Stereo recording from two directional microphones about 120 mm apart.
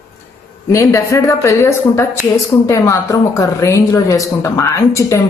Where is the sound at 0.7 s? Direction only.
25° left (ahead or behind).